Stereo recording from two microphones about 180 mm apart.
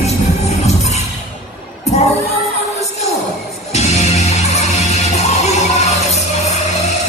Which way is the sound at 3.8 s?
35° left (ahead or behind).